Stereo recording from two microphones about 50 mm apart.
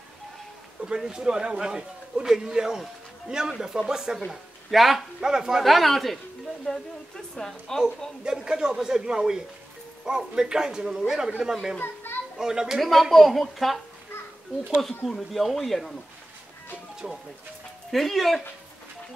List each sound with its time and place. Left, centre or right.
0.8 s a man's voice: centre
8.5 s a man's voice: centre
11.8 s children playing: left
12.4 s a man's voice: centre
12.8 s speech: centre
15.0 s speech: centre
17.0 s a man's voice: centre
17.9 s speech: centre